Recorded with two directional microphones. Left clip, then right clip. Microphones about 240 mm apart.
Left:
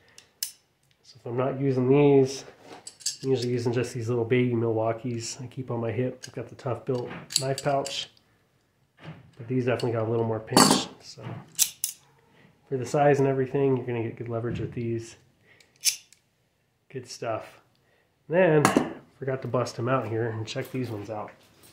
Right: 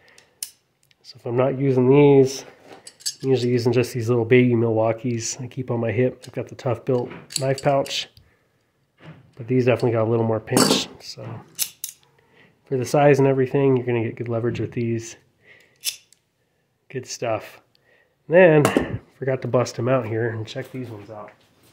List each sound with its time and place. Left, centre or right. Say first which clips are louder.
1.0 s speech: right 7 dB; right
2.8 s cutlery: right 3 dB; right
3.3 s speech: right 7 dB; right
9.5 s speech: right 7 dB; right
11.5 s scissors: left 3 dB; centre
12.6 s speech: right 6 dB; right
16.8 s speech: right 6 dB; right
20.6 s speech: right 2 dB; centre
21.1 s speech: left 3 dB; left